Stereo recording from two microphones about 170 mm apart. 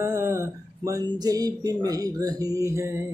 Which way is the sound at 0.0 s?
15° right (ahead or behind).